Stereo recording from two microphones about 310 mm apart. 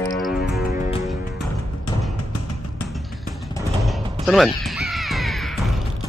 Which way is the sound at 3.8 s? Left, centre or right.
Centre.